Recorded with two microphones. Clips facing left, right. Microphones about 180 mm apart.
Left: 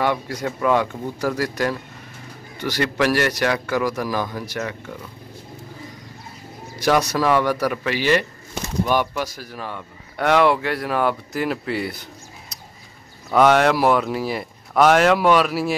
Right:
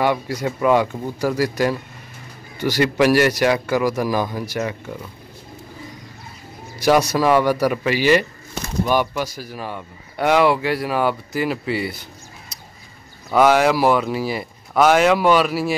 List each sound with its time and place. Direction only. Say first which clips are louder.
0.0 s a man's voice: right 2 dB; 10° right (ahead or behind)
6.8 s a man's voice: right 3 dB; 5° right (ahead or behind)